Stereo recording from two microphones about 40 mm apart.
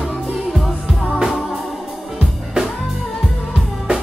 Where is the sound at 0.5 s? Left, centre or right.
Centre.